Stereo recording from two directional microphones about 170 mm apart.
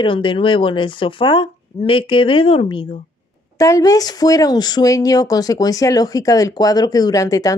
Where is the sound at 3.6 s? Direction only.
20° left (ahead or behind).